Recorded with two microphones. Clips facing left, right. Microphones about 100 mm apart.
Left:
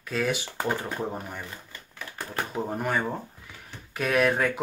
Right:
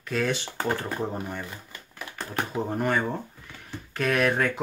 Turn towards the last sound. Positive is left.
turn(degrees=5)  # may be behind; listen again after turning